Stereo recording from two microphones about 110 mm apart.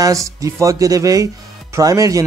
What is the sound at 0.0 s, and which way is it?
Speech, 30° right (ahead or behind).